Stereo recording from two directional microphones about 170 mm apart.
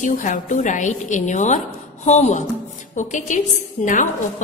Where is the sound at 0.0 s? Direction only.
50° left (ahead or behind).